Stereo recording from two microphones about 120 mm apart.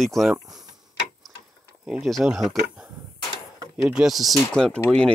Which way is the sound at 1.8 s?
5° right (ahead or behind).